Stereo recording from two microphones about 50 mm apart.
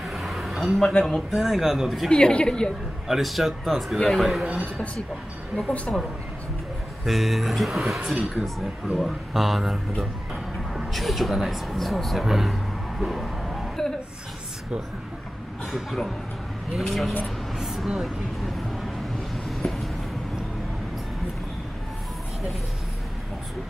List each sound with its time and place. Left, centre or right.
0.0 s a sound: centre
0.8 s speech: centre
2.0 s a woman's voice: centre
3.1 s speech: centre
5.6 s a woman's voice: centre
7.1 s speech: centre
13.0 s music: centre
16.7 s speech: centre
17.6 s a sound: centre